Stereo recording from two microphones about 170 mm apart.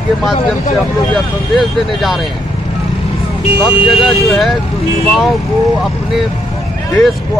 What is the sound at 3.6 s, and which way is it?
Speech, centre (ahead or behind).